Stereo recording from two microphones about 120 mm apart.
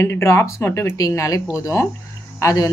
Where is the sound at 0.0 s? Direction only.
20° left (ahead or behind).